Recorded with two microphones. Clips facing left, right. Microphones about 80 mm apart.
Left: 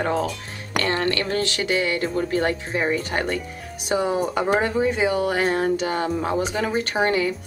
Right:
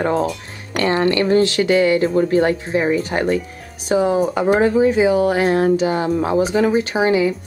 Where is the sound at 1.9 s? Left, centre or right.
Centre.